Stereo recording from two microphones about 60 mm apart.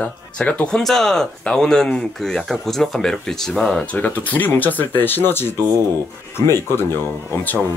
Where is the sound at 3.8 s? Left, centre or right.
Left.